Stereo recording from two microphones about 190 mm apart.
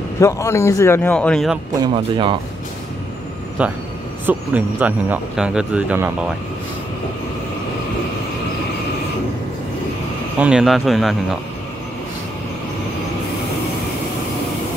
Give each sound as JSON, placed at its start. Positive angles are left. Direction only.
{"t": 0.2, "sound": "a man's voice", "side_deg": 15}
{"t": 1.8, "sound": "speech", "side_deg": -25}
{"t": 4.3, "sound": "speech", "side_deg": -10}
{"t": 10.4, "sound": "a man's voice", "side_deg": -5}